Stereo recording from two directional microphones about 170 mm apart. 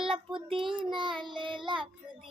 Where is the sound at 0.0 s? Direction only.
30° right (ahead or behind).